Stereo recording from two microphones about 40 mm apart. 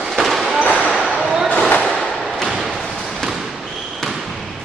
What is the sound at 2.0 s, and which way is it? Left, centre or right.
Fireworks, centre.